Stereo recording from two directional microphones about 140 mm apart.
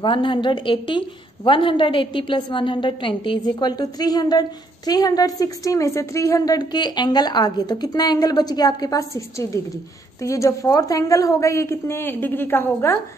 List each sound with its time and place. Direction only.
0.0 s a woman's voice: 35° left (ahead or behind); by 13.0 s 15° left (ahead or behind)